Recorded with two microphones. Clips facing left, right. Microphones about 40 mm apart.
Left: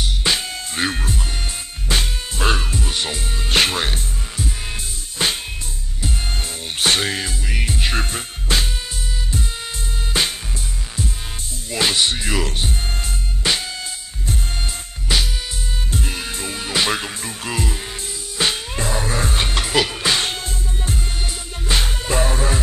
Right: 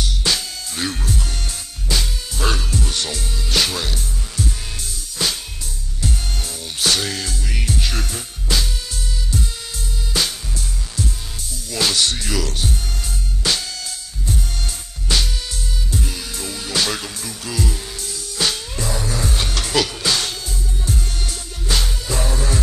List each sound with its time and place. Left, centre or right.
0.0 s music: left
2.8 s music: left
3.4 s music: left
5.2 s music: left
10.1 s music: left
11.7 s music: left
15.1 s music: centre
15.9 s music: left